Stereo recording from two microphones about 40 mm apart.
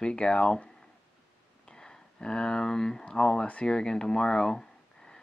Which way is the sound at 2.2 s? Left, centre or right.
Centre.